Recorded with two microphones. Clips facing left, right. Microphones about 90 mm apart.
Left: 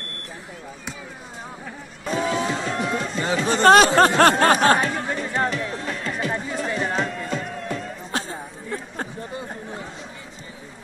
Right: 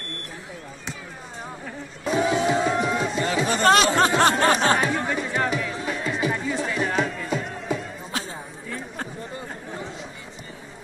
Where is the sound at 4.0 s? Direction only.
55° left (ahead or behind).